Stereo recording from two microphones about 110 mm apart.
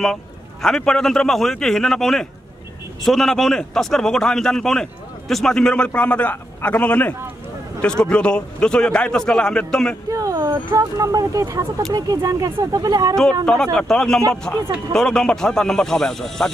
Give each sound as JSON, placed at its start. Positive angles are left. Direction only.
{"t": 0.0, "sound": "a man's voice", "side_deg": 5}
{"t": 10.0, "sound": "a sound", "side_deg": -30}
{"t": 10.8, "sound": "speech", "side_deg": -30}
{"t": 13.7, "sound": "a man's voice", "side_deg": 5}